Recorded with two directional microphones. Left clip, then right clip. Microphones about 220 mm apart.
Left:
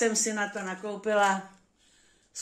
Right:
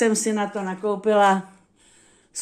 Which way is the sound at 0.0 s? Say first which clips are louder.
Right 6 dB; 45° right (ahead or behind).